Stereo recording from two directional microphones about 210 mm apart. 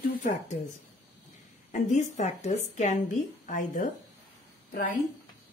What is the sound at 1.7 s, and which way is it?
A woman's voice, 35° left (ahead or behind).